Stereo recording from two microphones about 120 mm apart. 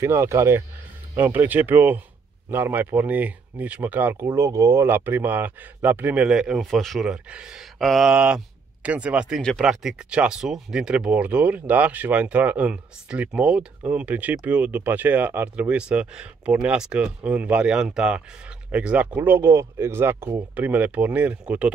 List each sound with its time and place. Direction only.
0.0 s speech: 25° right (ahead or behind)
4.4 s speech: 25° right (ahead or behind); by 9.4 s 10° right (ahead or behind)
9.4 s speech: centre (ahead or behind)